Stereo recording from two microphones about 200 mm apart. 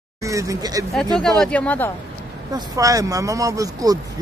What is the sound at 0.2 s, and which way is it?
Speech, 15° right (ahead or behind).